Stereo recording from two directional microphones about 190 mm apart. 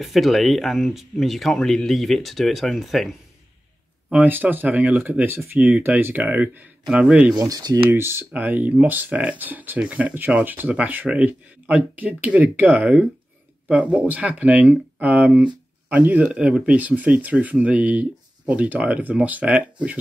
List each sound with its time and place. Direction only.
0.0 s speech: centre (ahead or behind)
7.3 s speech: 20° right (ahead or behind)